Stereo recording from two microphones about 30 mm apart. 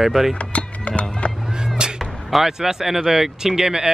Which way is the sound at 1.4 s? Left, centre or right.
Right.